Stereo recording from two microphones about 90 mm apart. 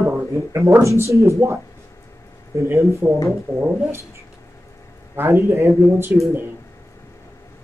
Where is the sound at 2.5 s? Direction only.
35° right (ahead or behind).